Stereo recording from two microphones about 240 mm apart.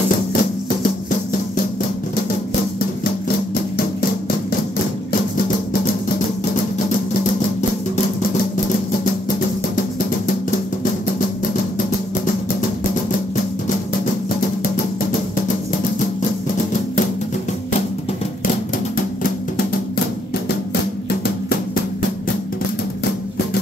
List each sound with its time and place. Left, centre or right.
0.3 s music: left
3.0 s music: left